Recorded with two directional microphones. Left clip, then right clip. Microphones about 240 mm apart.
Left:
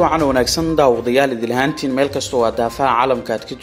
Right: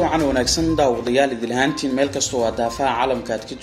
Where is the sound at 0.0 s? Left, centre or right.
Left.